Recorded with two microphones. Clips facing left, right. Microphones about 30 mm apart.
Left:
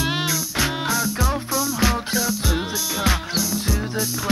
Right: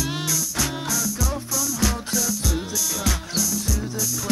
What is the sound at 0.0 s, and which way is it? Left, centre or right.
Music, left.